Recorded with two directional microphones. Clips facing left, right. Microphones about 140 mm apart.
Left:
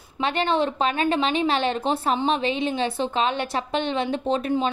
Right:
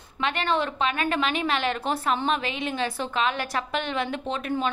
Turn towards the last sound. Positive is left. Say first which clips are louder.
# left 4 dB
turn(degrees=35)  # may be behind; listen again after turning